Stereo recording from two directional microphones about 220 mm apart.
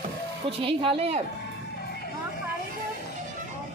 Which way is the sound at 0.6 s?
25° right (ahead or behind).